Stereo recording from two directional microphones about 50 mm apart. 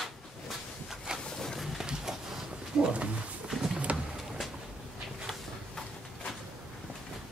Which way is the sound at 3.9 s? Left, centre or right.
Right.